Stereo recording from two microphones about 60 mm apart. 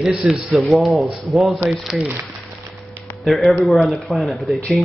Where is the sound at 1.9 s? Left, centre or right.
Centre.